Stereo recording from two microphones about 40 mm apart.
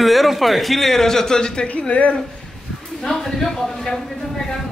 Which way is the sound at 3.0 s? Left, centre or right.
Centre.